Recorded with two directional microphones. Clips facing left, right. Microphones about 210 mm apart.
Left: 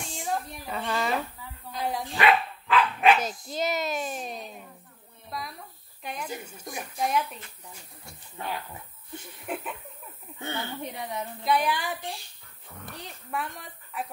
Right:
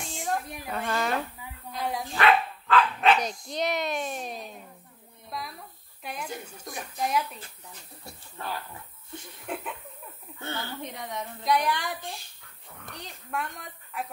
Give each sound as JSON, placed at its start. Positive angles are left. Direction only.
{"t": 0.0, "sound": "a sound", "side_deg": 0}
{"t": 0.7, "sound": "speech", "side_deg": 0}
{"t": 2.1, "sound": "speech", "side_deg": 15}
{"t": 6.0, "sound": "speech", "side_deg": 5}
{"t": 8.4, "sound": "speech", "side_deg": 20}
{"t": 9.1, "sound": "a woman's voice", "side_deg": 5}
{"t": 13.0, "sound": "speech", "side_deg": 0}